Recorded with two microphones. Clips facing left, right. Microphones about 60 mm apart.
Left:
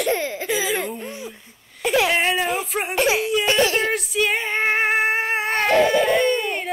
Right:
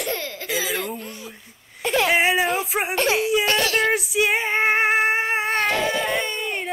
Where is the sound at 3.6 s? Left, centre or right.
Left.